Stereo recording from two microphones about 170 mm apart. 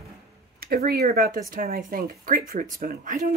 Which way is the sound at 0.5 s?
60° right (ahead or behind).